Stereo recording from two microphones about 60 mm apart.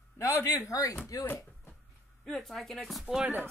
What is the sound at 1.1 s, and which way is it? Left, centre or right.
Speech, left.